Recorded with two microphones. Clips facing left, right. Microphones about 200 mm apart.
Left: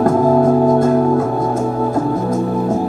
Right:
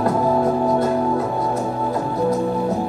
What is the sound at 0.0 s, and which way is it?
Music, 50° left (ahead or behind).